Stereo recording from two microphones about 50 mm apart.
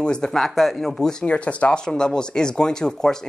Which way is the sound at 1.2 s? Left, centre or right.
Left.